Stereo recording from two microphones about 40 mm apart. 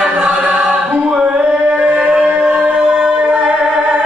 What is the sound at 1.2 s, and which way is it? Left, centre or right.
Singing, right.